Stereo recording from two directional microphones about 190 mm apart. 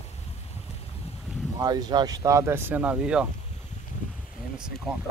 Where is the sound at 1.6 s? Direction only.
20° right (ahead or behind); by 3.3 s 5° right (ahead or behind).